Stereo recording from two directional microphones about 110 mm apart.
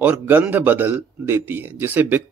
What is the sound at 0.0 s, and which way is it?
Speech, 15° right (ahead or behind).